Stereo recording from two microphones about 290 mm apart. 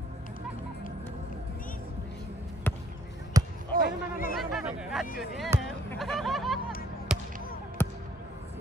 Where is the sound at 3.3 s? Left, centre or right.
Centre.